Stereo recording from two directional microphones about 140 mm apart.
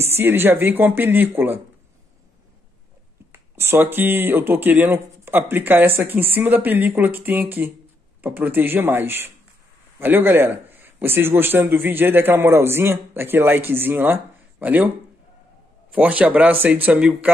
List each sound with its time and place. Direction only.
0.0 s a man's voice: 15° right (ahead or behind)
3.3 s a man's voice: 15° right (ahead or behind)
15.9 s a man's voice: 10° right (ahead or behind)